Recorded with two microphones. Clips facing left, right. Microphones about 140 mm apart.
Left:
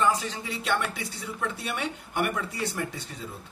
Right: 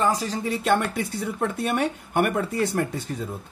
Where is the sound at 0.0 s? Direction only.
35° right (ahead or behind).